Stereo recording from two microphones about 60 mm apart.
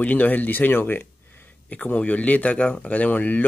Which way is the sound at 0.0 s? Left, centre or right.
Left.